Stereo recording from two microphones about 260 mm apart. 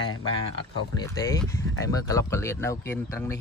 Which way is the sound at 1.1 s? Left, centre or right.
Centre.